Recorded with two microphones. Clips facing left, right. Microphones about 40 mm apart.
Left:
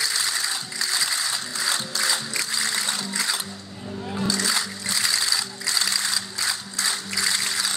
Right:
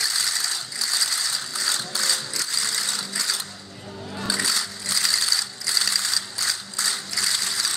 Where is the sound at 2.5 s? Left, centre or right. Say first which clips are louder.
Left 1 dB; centre.